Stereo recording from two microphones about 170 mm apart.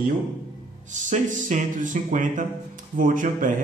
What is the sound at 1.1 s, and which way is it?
Speech, 45° right (ahead or behind).